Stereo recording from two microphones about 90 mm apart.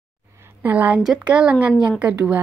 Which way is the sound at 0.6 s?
20° right (ahead or behind).